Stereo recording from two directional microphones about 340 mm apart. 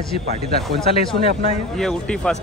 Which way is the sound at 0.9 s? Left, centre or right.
Centre.